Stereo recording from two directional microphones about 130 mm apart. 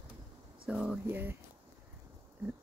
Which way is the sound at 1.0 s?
15° right (ahead or behind).